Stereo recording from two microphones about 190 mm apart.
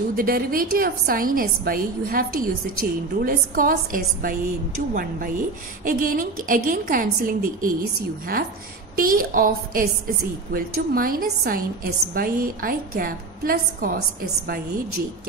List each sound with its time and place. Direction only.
0.1 s a woman's voice: 50° right (ahead or behind)
5.9 s a woman's voice: 45° right (ahead or behind)
8.9 s a woman's voice: 50° right (ahead or behind)